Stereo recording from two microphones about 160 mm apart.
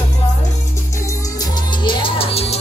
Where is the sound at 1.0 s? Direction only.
20° left (ahead or behind); by 2.6 s 40° left (ahead or behind).